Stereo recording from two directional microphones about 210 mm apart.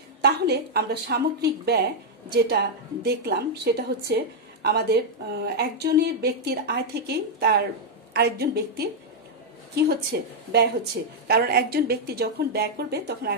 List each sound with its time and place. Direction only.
0.2 s a woman's voice: 50° right (ahead or behind)
10.1 s a woman's voice: 50° right (ahead or behind)